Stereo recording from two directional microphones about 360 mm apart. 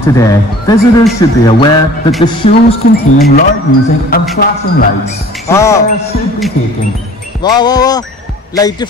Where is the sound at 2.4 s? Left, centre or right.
Centre.